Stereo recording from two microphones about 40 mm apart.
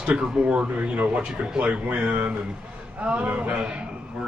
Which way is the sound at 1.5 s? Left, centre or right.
Right.